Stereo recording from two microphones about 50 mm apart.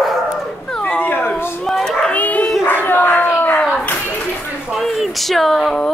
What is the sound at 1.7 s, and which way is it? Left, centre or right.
Child singing, centre.